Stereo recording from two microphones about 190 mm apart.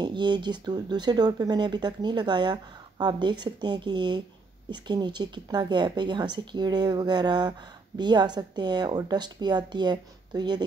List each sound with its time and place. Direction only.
0.0 s speech: 25° right (ahead or behind)